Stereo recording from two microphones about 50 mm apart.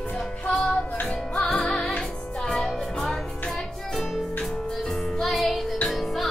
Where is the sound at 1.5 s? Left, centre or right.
Centre.